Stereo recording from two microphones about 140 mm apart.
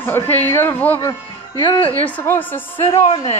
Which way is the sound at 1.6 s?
40° left (ahead or behind).